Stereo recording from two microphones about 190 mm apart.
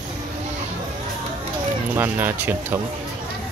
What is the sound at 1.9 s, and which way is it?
Speech, 10° right (ahead or behind).